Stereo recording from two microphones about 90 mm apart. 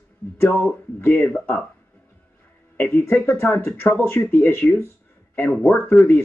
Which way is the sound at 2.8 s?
25° left (ahead or behind).